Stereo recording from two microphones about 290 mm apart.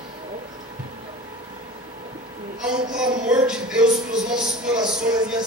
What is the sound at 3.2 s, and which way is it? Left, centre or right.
A man's voice, centre.